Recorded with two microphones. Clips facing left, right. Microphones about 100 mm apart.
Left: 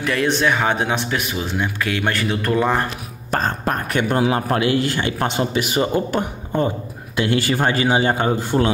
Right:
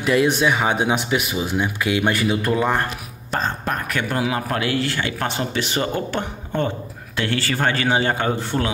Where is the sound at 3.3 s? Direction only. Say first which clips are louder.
Left 3 dB; 40° left (ahead or behind); by 8.6 s 15° left (ahead or behind).